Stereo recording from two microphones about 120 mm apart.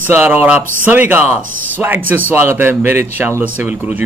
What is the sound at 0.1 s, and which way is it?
A man's voice, 15° right (ahead or behind).